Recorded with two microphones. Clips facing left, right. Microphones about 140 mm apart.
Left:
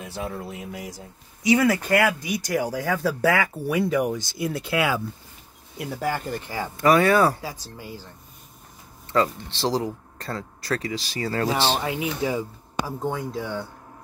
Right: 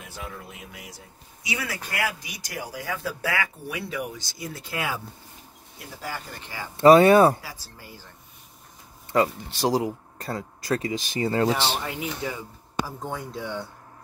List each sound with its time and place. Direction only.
0.0 s speech: 35° left (ahead or behind); by 5.0 s 90° left
5.8 s speech: 60° left (ahead or behind)
6.8 s speech: 25° right (ahead or behind)
7.4 s speech: 20° left (ahead or behind)
9.1 s speech: 15° right (ahead or behind)
11.5 s speech: 15° left (ahead or behind)
13.1 s speech: centre (ahead or behind)